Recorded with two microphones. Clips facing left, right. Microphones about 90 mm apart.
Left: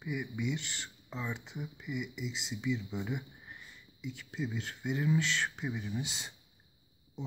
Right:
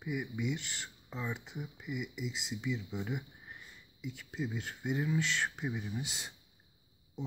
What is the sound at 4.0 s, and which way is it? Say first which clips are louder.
Speech: left 1 dB; 10° right (ahead or behind).